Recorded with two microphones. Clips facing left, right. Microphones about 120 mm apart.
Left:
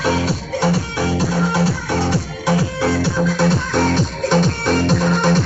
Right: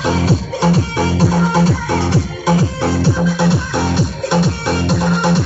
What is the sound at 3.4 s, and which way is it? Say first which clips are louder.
Music: even; 10° right (ahead or behind).